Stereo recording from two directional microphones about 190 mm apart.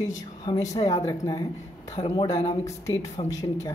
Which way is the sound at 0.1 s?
20° left (ahead or behind).